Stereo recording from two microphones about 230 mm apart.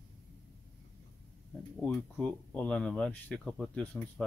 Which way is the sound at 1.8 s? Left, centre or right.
Centre.